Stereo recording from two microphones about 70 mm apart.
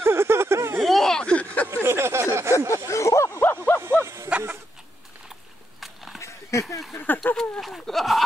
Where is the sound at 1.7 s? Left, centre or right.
Right.